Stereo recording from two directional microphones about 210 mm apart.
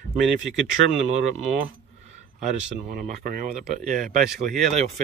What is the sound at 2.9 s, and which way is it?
Speech, 40° right (ahead or behind).